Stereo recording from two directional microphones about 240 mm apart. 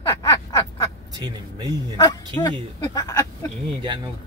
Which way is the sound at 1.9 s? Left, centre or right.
Centre.